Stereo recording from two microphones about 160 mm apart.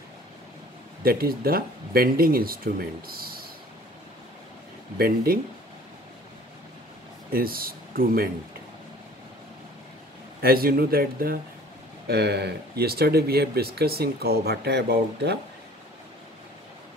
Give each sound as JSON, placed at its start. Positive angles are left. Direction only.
{"t": 1.0, "sound": "speech", "side_deg": -70}
{"t": 4.9, "sound": "speech", "side_deg": -70}
{"t": 7.3, "sound": "speech", "side_deg": -65}
{"t": 10.4, "sound": "speech", "side_deg": -70}
{"t": 12.1, "sound": "speech", "side_deg": -90}